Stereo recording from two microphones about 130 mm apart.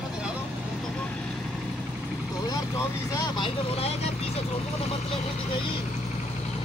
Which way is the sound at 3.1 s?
35° left (ahead or behind).